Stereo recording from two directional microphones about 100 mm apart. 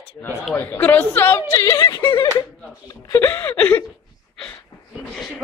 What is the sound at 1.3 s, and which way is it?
Speech, 35° left (ahead or behind).